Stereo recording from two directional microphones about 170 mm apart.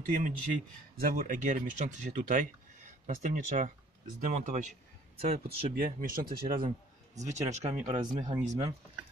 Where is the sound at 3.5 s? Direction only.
45° right (ahead or behind).